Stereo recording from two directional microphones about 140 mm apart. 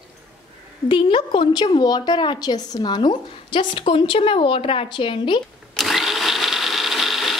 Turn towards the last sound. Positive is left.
turn(degrees=0)  # may be behind; listen again after turning